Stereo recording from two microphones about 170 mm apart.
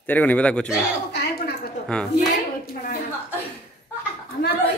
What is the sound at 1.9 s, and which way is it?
Speech, 5° left (ahead or behind).